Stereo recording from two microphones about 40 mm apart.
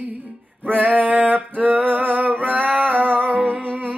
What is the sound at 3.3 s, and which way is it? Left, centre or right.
Music, right.